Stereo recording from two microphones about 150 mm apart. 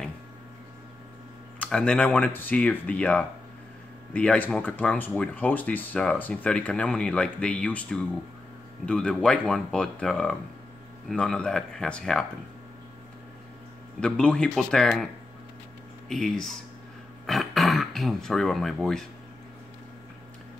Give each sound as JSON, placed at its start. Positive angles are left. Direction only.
{"t": 1.6, "sound": "speech", "side_deg": 5}
{"t": 13.9, "sound": "speech", "side_deg": 5}
{"t": 16.1, "sound": "speech", "side_deg": 5}